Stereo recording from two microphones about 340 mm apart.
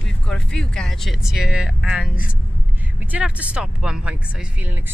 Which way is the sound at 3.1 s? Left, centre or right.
Centre.